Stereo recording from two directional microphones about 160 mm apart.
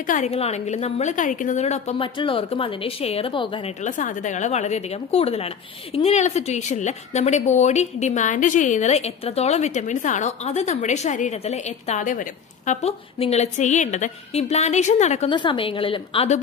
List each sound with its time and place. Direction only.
0.0 s a woman's voice: 55° left (ahead or behind)
0.3 s a woman's voice: 40° left (ahead or behind)
2.1 s a woman's voice: 35° left (ahead or behind)
3.8 s a woman's voice: 50° left (ahead or behind)
15.2 s a woman's voice: 30° left (ahead or behind)